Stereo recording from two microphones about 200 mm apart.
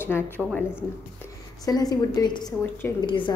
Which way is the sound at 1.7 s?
20° left (ahead or behind).